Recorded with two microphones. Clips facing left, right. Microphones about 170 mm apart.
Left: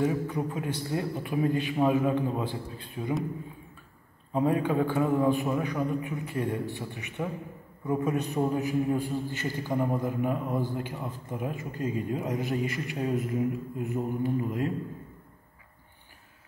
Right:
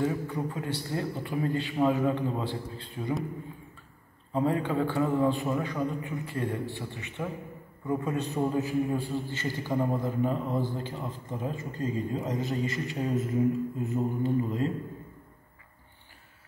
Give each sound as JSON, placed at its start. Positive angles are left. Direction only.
{"t": 0.0, "sound": "a man's voice", "side_deg": 15}
{"t": 4.3, "sound": "a man's voice", "side_deg": 15}